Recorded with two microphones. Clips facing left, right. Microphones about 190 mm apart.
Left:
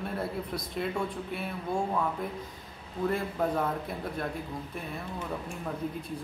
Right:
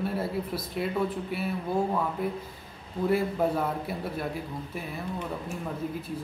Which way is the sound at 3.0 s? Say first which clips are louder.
Right 4 dB; 10° right (ahead or behind).